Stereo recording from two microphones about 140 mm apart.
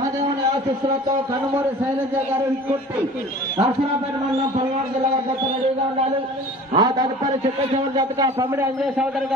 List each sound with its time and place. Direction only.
6.7 s a man's voice: 35° right (ahead or behind)
8.4 s a man's voice: 15° right (ahead or behind)